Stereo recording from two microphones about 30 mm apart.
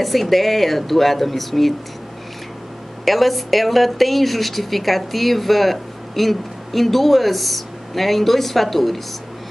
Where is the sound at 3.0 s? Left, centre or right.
Centre.